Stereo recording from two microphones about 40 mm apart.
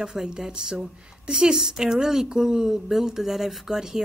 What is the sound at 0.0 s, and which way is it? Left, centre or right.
A woman's voice, centre.